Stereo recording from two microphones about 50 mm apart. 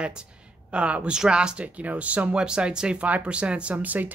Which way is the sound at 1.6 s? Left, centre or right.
Right.